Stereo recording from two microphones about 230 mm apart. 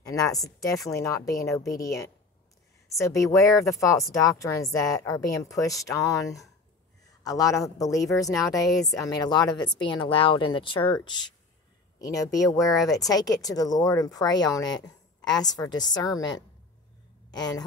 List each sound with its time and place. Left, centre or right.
0.0 s speech: centre
17.3 s a woman's voice: centre